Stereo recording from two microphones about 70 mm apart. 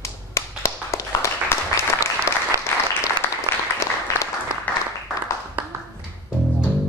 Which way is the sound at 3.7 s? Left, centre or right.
Left.